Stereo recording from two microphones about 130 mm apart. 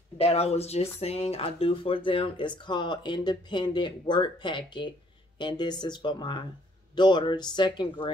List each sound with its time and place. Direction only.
0.2 s speech: 50° left (ahead or behind)